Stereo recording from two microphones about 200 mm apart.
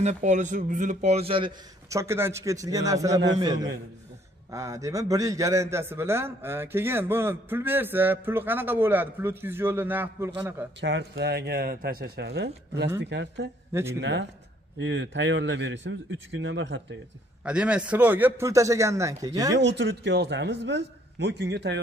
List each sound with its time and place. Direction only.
0.0 s speech: 35° right (ahead or behind)
1.9 s a man's voice: 15° right (ahead or behind)
10.8 s a man's voice: 60° right (ahead or behind)
17.5 s a man's voice: 5° right (ahead or behind)
19.5 s speech: 60° right (ahead or behind)